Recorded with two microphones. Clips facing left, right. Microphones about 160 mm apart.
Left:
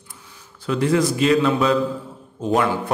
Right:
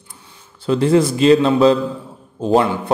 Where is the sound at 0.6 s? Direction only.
30° right (ahead or behind).